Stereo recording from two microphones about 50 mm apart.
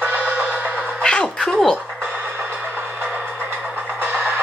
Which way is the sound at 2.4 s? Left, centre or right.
Right.